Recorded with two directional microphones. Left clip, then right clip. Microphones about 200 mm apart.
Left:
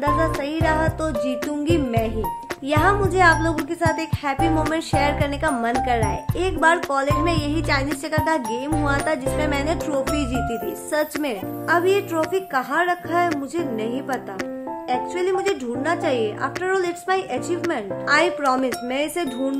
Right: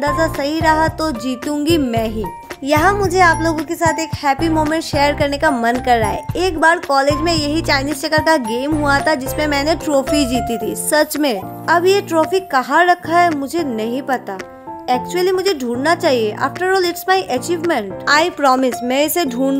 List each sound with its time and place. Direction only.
0.0 s speech: 40° right (ahead or behind)
2.7 s speech: 30° right (ahead or behind)